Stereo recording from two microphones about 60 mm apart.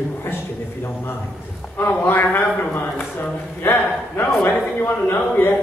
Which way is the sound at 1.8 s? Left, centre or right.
Left.